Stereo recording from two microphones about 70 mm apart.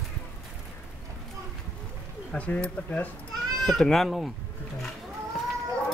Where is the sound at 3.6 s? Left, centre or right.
Centre.